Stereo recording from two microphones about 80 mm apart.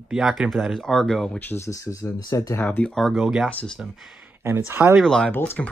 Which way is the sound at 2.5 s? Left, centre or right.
Centre.